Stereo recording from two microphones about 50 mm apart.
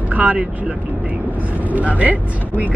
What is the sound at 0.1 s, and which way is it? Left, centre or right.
Speech, right.